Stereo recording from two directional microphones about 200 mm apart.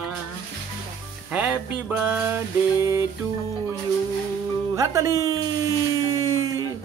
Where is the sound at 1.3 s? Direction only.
5° right (ahead or behind).